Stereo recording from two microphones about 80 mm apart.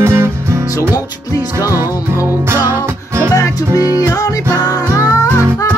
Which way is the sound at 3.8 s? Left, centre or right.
Left.